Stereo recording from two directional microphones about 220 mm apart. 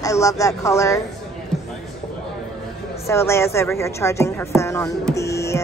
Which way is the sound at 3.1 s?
10° left (ahead or behind).